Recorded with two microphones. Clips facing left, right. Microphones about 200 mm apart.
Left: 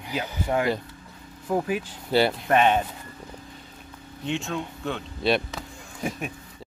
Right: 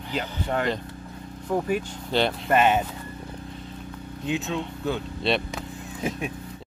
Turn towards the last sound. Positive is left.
turn(degrees=0)  # may be behind; listen again after turning